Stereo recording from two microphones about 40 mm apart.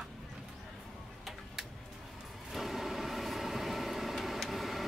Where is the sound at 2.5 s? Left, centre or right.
Centre.